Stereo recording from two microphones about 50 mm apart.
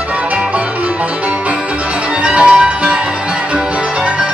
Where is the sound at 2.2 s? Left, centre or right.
Centre.